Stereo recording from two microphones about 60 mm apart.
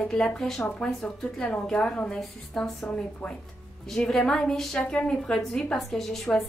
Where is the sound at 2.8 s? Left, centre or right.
Centre.